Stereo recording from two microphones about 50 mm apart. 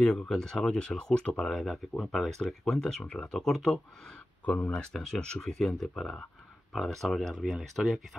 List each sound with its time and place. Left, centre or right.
0.0 s speech: left
0.3 s speech: centre
4.5 s speech: left
4.9 s speech: centre